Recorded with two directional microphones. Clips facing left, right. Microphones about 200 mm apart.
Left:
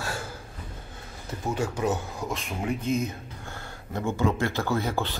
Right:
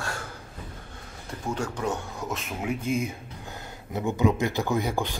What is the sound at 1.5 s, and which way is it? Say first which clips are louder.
Speech: left 2 dB; 5° left (ahead or behind).